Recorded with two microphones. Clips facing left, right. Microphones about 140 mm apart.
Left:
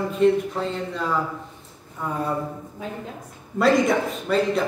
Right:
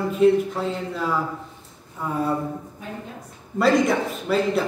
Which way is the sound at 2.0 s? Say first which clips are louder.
Right 1 dB; 5° right (ahead or behind).